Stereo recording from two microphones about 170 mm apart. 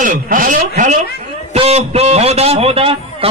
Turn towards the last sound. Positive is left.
turn(degrees=-35)  # may be behind; listen again after turning